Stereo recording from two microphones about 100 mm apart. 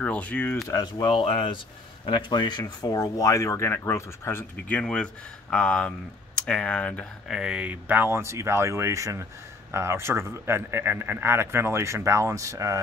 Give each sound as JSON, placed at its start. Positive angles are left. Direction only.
{"t": 0.0, "sound": "speech", "side_deg": 15}
{"t": 0.7, "sound": "speech", "side_deg": 35}
{"t": 1.1, "sound": "speech", "side_deg": 60}
{"t": 7.2, "sound": "a man's voice", "side_deg": -5}